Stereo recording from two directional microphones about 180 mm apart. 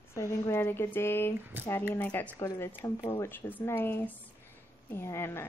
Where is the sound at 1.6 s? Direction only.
10° right (ahead or behind).